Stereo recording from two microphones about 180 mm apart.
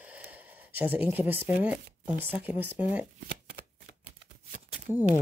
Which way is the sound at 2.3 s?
10° right (ahead or behind).